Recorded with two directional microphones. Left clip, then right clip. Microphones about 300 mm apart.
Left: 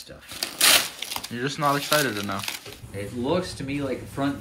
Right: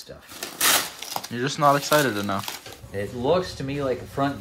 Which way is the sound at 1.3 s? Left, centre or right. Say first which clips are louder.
Right 5 dB; centre.